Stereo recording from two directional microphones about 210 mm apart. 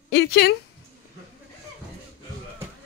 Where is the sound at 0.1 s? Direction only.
50° left (ahead or behind).